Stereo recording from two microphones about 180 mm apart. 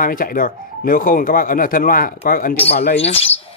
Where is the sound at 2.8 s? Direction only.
35° left (ahead or behind).